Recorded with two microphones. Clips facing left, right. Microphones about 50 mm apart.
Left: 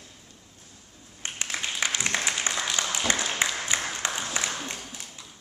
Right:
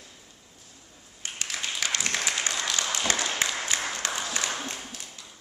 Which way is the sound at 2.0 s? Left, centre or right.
Centre.